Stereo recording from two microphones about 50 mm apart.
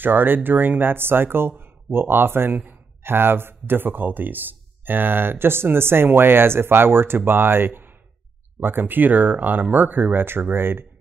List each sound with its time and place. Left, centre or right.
0.0 s a man's voice: right